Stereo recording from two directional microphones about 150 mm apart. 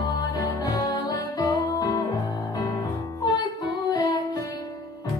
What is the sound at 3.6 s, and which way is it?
Music, 25° left (ahead or behind).